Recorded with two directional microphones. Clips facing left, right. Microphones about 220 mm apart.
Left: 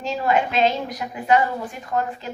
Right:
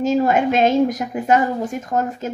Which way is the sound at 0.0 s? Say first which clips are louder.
Right 6 dB; 45° right (ahead or behind).